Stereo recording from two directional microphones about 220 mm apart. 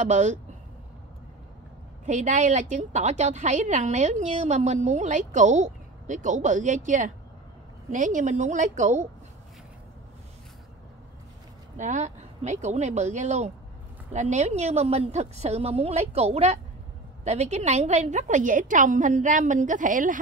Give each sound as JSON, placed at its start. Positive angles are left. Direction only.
{"t": 0.0, "sound": "a woman's voice", "side_deg": -35}
{"t": 2.0, "sound": "a woman's voice", "side_deg": -35}
{"t": 11.7, "sound": "a woman's voice", "side_deg": -35}